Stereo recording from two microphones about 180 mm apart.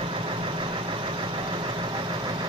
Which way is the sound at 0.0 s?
30° right (ahead or behind).